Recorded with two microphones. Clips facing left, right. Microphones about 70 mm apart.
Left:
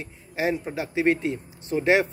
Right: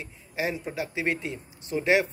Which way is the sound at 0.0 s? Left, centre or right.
Left.